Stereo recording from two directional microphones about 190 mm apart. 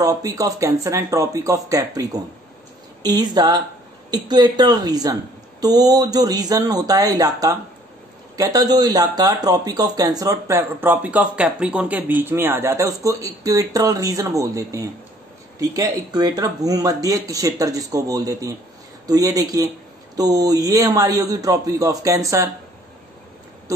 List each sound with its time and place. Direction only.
0.0 s a man's voice: 15° right (ahead or behind)